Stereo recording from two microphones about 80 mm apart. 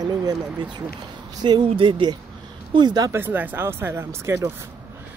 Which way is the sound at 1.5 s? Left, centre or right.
Right.